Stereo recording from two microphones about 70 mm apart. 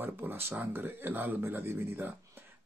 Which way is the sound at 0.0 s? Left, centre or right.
Right.